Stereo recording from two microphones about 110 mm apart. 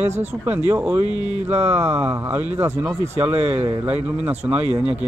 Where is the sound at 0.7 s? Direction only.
20° right (ahead or behind).